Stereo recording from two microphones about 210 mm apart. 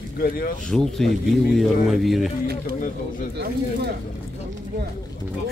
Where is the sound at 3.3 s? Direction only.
50° right (ahead or behind).